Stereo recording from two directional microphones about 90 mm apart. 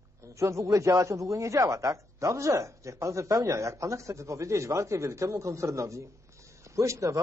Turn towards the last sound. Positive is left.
turn(degrees=-35)  # may be behind; listen again after turning